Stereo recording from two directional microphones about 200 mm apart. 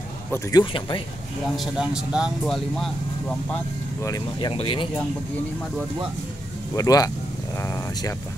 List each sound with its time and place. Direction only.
0.3 s speech: 20° left (ahead or behind)
1.6 s speech: 5° right (ahead or behind)
4.0 s speech: 20° left (ahead or behind)
6.7 s speech: 20° left (ahead or behind)